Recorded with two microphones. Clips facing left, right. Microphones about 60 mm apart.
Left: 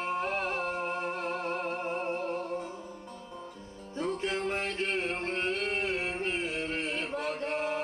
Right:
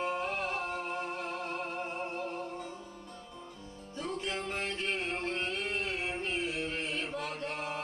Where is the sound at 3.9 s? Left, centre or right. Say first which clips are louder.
Left 5 dB; left.